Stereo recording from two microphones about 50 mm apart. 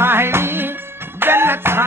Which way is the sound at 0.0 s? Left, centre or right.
Right.